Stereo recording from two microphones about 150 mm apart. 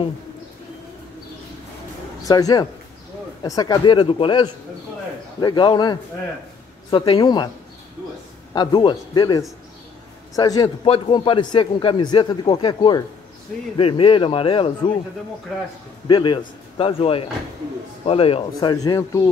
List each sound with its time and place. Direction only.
2.2 s a man's voice: 25° left (ahead or behind)
8.5 s a man's voice: 30° left (ahead or behind)
15.5 s a man's voice: centre (ahead or behind)
16.1 s a man's voice: 35° left (ahead or behind)